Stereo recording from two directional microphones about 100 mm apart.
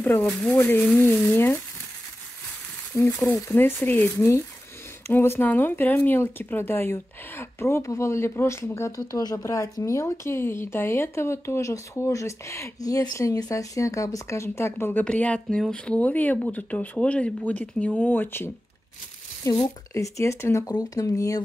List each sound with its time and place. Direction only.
0.0 s speech: 20° left (ahead or behind)
2.9 s speech: 25° left (ahead or behind)
19.4 s speech: 30° left (ahead or behind)